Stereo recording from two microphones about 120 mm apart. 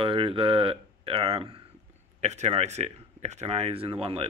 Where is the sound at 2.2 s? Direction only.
70° right (ahead or behind).